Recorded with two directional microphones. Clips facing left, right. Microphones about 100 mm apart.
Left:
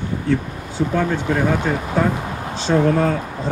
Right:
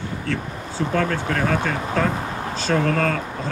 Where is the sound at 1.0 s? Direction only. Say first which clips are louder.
Left 2 dB; 15° left (ahead or behind).